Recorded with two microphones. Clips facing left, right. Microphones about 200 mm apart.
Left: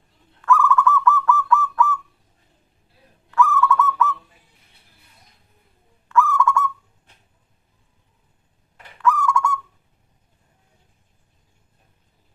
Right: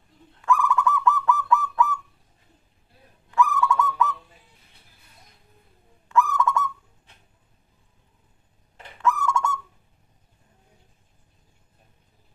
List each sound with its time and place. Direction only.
0.4 s bird: 15° right (ahead or behind)
3.3 s owl: 15° right (ahead or behind)
6.0 s honk: 20° right (ahead or behind)
8.7 s bird: 25° right (ahead or behind)